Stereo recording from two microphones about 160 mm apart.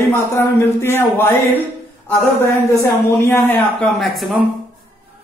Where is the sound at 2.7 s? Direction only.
15° left (ahead or behind).